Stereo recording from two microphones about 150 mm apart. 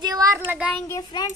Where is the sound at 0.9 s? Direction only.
25° left (ahead or behind).